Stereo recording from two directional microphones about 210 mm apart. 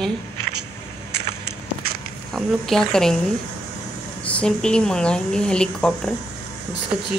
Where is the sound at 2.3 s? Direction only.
Centre (ahead or behind).